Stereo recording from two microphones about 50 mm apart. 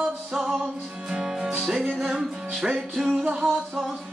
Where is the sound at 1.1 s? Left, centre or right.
Centre.